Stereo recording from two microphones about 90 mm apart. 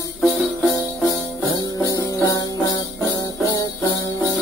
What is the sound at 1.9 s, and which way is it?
Music, 40° left (ahead or behind).